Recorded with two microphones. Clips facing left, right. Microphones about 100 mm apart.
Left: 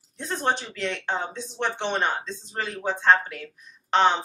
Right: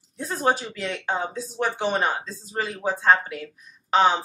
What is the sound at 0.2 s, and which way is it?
Speech, 5° right (ahead or behind).